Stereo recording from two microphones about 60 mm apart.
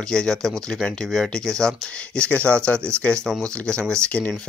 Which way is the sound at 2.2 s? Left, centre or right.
Left.